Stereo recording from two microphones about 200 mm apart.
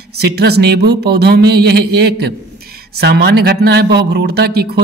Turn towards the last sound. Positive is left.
turn(degrees=-55)  # may be behind; listen again after turning